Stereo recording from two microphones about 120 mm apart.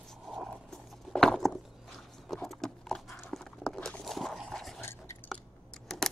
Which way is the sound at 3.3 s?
5° left (ahead or behind).